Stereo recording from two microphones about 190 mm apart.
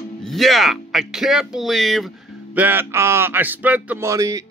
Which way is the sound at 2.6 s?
10° right (ahead or behind).